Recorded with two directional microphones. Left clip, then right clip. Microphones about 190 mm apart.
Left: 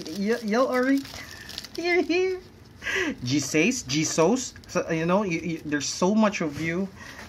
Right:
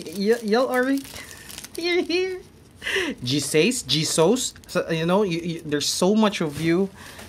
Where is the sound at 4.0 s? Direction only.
10° right (ahead or behind).